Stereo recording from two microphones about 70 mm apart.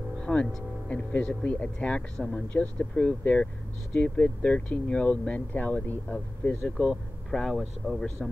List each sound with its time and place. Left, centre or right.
0.2 s music: centre
0.8 s speech: centre
6.6 s speech: centre